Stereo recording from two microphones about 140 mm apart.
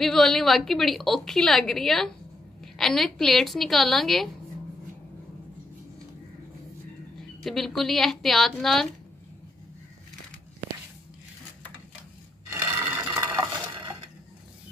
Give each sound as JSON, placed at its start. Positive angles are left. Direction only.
{"t": 0.0, "sound": "a woman's voice", "side_deg": 0}
{"t": 7.4, "sound": "a woman's voice", "side_deg": 0}
{"t": 12.4, "sound": "a sound", "side_deg": -20}